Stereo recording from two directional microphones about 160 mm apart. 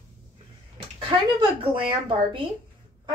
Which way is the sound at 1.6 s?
30° right (ahead or behind).